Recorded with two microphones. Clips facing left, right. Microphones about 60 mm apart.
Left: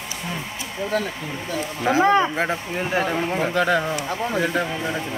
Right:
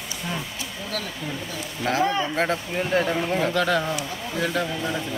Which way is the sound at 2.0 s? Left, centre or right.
Left.